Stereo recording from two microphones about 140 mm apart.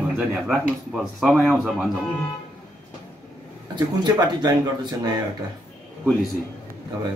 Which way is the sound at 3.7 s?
30° right (ahead or behind).